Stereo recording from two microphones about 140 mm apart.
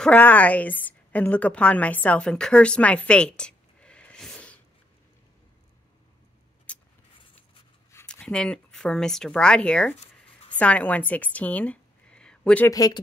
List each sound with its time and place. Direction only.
0.0 s a woman's voice: 10° left (ahead or behind)
6.7 s keys jangling: 10° left (ahead or behind)
8.1 s speech: 5° left (ahead or behind)
12.6 s speech: 25° left (ahead or behind)